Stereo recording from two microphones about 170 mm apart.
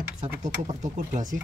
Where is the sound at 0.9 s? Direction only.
45° right (ahead or behind).